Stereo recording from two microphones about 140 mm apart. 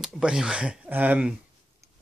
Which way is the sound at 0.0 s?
5° right (ahead or behind).